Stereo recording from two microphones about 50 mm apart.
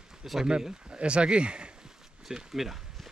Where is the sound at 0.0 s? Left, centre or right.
Centre.